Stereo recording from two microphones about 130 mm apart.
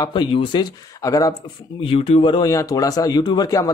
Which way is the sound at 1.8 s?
50° left (ahead or behind).